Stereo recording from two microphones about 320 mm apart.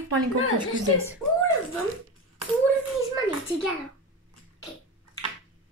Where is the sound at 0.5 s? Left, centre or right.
Centre.